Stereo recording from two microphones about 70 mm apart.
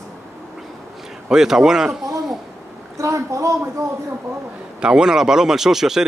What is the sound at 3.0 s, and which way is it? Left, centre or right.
Speech, right.